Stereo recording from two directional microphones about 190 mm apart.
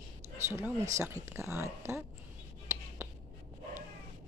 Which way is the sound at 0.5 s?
15° right (ahead or behind).